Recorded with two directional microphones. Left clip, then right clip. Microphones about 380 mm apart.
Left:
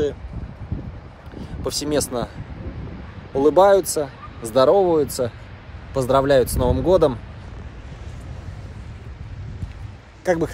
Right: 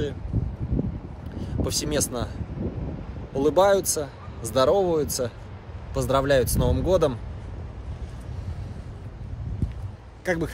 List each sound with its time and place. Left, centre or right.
1.4 s speech: centre
3.3 s speech: centre
10.2 s a man's voice: centre